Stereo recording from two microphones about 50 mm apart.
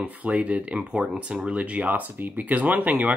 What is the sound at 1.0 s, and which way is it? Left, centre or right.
Speech, centre.